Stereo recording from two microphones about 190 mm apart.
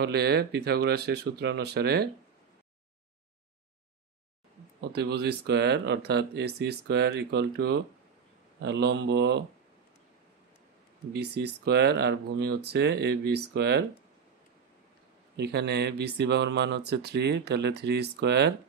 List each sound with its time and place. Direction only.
0.0 s speech: 55° right (ahead or behind)
4.8 s speech: 60° right (ahead or behind)
11.1 s speech: 60° right (ahead or behind)
15.3 s speech: 60° right (ahead or behind)